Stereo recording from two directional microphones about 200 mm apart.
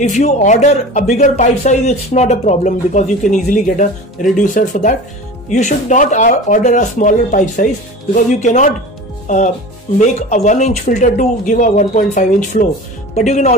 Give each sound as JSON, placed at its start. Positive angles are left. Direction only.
{"t": 0.0, "sound": "speech", "side_deg": 35}
{"t": 9.9, "sound": "speech", "side_deg": 35}